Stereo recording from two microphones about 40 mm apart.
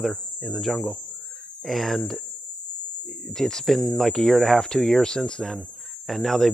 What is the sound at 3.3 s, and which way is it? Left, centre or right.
Speech, centre.